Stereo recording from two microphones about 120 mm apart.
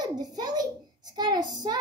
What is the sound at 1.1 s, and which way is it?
Child singing, 35° right (ahead or behind).